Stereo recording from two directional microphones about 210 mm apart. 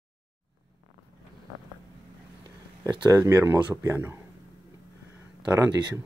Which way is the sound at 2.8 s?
15° right (ahead or behind).